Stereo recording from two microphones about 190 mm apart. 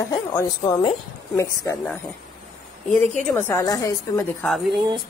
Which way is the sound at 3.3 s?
10° left (ahead or behind).